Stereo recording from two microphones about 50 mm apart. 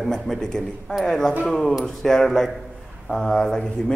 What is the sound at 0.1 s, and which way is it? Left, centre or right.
A man's voice, centre.